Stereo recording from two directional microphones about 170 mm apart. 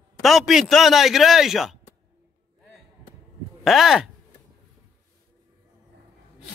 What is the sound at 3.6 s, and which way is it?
Speech, centre (ahead or behind).